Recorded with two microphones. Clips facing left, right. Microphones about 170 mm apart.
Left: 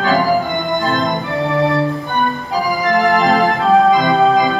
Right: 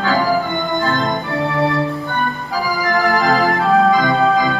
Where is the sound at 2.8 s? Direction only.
20° left (ahead or behind).